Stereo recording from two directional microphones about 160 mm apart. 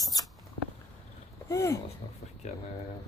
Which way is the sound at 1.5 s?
15° left (ahead or behind).